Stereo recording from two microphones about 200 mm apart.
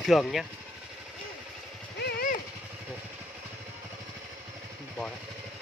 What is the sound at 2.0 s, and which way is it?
Vehicle, 55° left (ahead or behind).